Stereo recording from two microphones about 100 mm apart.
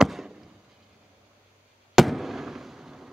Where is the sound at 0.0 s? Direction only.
5° right (ahead or behind).